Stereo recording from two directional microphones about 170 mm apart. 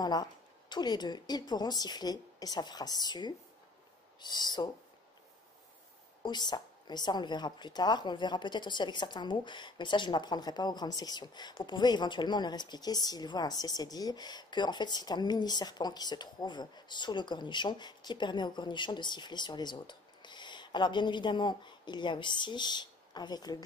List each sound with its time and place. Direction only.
0.0 s a woman's voice: 25° left (ahead or behind)
6.2 s a woman's voice: 25° left (ahead or behind)